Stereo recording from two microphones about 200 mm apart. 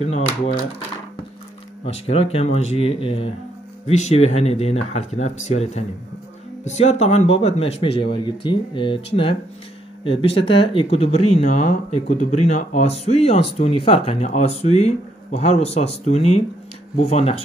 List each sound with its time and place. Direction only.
0.0 s speech: 35° left (ahead or behind)
1.9 s speech: 30° left (ahead or behind)